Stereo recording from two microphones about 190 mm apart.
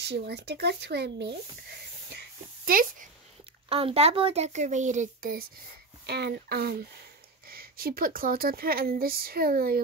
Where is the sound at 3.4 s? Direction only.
30° right (ahead or behind).